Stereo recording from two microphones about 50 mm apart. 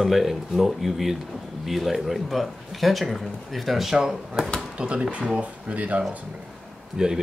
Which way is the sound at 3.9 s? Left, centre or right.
Centre.